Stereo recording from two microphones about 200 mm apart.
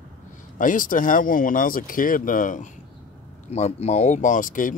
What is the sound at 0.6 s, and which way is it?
Speech, 40° left (ahead or behind).